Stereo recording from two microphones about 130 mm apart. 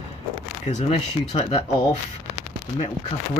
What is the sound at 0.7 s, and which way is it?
Speech, 55° left (ahead or behind).